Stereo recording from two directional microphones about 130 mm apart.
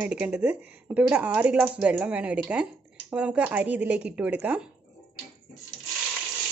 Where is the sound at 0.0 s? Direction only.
10° right (ahead or behind).